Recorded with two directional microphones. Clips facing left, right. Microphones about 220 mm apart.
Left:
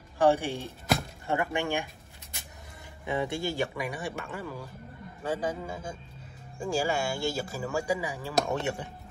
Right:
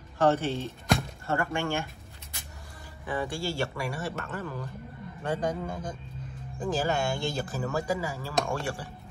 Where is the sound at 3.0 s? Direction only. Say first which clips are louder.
Left 1 dB; 20° left (ahead or behind).